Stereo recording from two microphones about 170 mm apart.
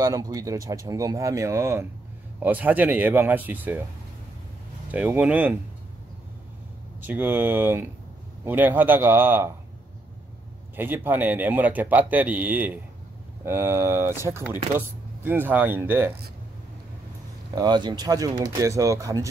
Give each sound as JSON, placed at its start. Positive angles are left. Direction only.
{"t": 0.0, "sound": "a man's voice", "side_deg": -20}
{"t": 4.9, "sound": "a man's voice", "side_deg": -5}
{"t": 7.0, "sound": "a man's voice", "side_deg": -10}
{"t": 10.8, "sound": "a man's voice", "side_deg": -10}
{"t": 17.6, "sound": "speech", "side_deg": -25}